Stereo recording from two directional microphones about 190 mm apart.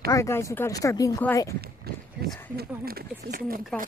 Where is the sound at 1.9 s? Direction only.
55° right (ahead or behind).